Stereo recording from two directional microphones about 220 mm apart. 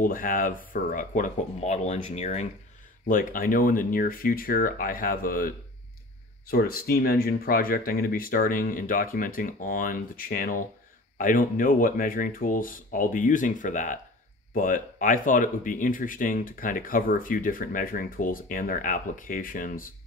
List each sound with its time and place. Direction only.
0.0 s speech: 40° left (ahead or behind)